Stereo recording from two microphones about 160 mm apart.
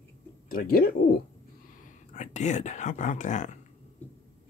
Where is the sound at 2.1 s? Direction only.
50° left (ahead or behind).